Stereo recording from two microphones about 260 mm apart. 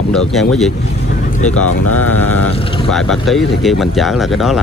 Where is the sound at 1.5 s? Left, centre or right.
Left.